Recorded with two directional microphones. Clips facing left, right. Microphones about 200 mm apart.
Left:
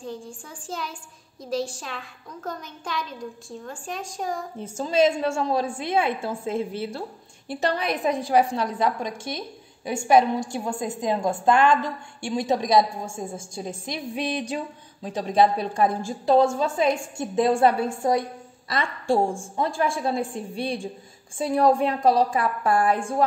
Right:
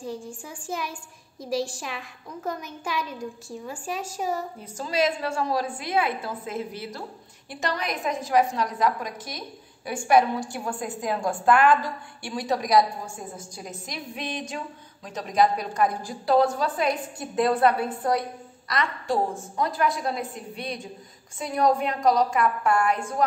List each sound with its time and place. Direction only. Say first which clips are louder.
0.0 s a woman's voice: right 1 dB; 10° right (ahead or behind)
4.6 s a woman's voice: left 8 dB; 25° left (ahead or behind)